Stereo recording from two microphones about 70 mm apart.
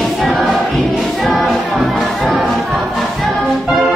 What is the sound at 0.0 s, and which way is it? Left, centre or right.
Music, centre.